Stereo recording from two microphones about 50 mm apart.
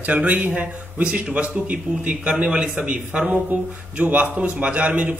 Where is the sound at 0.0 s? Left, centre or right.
Right.